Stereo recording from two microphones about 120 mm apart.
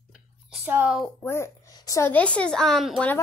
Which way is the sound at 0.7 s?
15° right (ahead or behind).